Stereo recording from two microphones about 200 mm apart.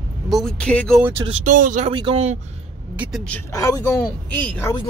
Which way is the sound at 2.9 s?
5° right (ahead or behind).